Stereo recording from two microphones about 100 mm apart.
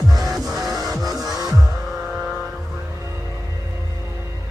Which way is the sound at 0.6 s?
35° right (ahead or behind).